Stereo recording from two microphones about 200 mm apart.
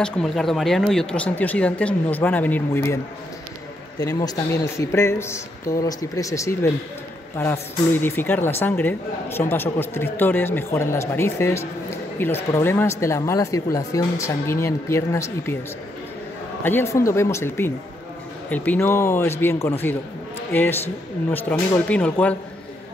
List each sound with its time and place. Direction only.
0.0 s speech: 5° left (ahead or behind)
4.0 s speech: 15° left (ahead or behind)
7.9 s speech: 10° left (ahead or behind)
16.6 s speech: 10° left (ahead or behind)